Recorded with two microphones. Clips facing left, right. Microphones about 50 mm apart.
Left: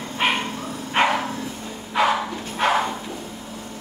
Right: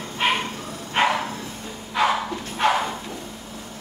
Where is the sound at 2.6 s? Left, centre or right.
Centre.